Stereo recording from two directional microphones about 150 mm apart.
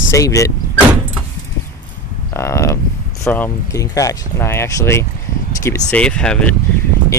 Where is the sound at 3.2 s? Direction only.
15° left (ahead or behind).